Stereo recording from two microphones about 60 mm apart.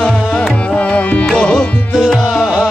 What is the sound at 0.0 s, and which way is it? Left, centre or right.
Music, left.